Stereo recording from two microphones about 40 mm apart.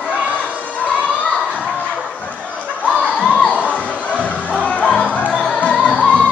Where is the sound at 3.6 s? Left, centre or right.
Left.